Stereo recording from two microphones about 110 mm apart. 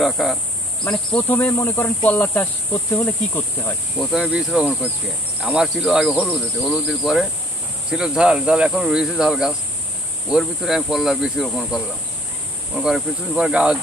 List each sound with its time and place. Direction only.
0.0 s speech: centre (ahead or behind)
1.1 s speech: 20° left (ahead or behind)
4.1 s speech: 5° right (ahead or behind)
12.8 s speech: 5° right (ahead or behind)